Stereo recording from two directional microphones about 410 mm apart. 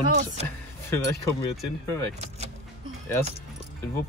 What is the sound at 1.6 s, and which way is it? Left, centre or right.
Speech, centre.